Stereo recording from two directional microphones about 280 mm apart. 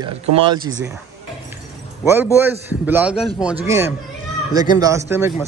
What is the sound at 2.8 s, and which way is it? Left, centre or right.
A man's voice, centre.